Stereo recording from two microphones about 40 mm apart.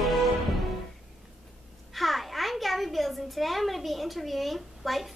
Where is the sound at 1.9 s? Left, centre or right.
Centre.